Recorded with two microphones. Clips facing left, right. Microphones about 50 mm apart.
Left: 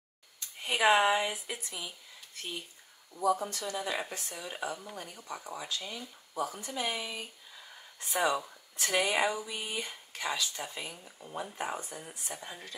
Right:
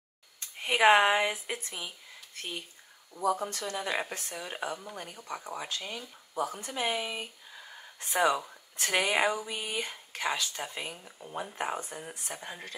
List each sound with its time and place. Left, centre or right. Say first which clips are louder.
0.4 s speech: right 4 dB; right